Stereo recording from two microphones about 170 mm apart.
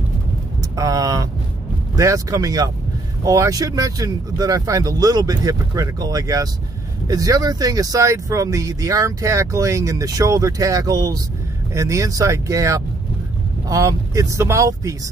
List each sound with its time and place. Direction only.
0.6 s vehicle: 20° right (ahead or behind)
2.0 s speech: 20° right (ahead or behind)